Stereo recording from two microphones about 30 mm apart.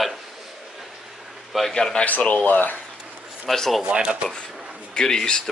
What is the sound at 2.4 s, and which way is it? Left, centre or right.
Speech, left.